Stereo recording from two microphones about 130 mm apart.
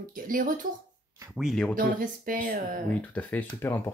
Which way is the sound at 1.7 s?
90° right.